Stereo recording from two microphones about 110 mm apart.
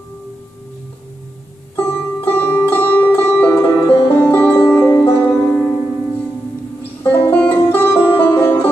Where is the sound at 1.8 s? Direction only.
20° left (ahead or behind).